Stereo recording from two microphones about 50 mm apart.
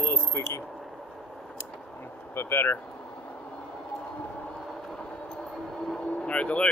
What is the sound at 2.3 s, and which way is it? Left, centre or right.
Speech, left.